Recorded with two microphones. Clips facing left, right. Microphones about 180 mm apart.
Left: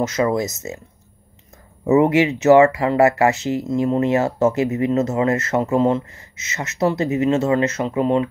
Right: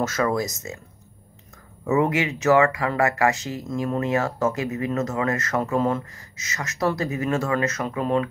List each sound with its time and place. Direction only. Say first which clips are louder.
0.0 s speech: left 4 dB; 20° left (ahead or behind)
1.9 s speech: left 7 dB; 25° left (ahead or behind)